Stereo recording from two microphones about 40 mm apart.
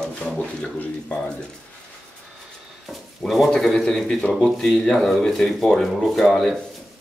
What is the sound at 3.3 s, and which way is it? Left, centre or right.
A man's voice, centre.